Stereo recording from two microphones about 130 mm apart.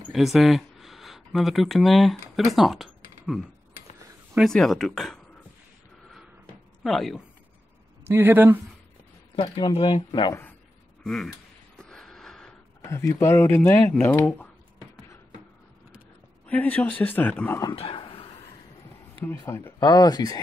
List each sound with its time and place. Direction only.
0.1 s speech: centre (ahead or behind)
6.8 s speech: centre (ahead or behind)
8.0 s speech: 15° right (ahead or behind)
9.3 s speech: 40° left (ahead or behind)
11.8 s a sound: 5° left (ahead or behind)
12.8 s speech: 20° left (ahead or behind)
16.4 s speech: 10° left (ahead or behind)
17.7 s a sound: 45° left (ahead or behind)
19.5 s speech: 20° left (ahead or behind)
19.8 s speech: 30° left (ahead or behind)